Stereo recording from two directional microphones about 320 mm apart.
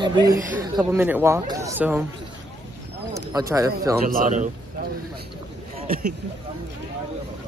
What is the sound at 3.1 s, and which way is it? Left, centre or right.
Speech, centre.